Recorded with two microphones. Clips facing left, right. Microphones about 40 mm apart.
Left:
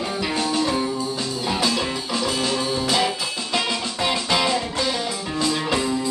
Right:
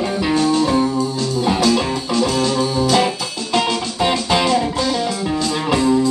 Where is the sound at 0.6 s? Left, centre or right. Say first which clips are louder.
Right 6 dB; centre.